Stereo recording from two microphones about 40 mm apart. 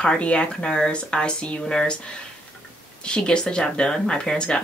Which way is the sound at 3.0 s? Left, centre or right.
Left.